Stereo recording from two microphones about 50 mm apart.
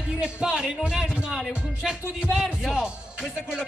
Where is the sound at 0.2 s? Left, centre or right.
Centre.